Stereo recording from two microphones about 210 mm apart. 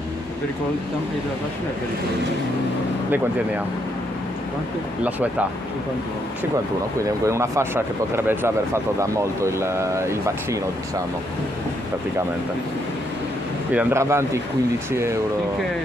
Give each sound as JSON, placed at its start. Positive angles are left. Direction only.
{"t": 7.2, "sound": "speech", "side_deg": -15}
{"t": 13.7, "sound": "speech", "side_deg": -10}